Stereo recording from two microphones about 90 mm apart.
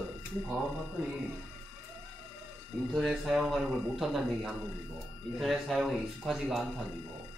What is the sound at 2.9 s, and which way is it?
Speech, centre (ahead or behind).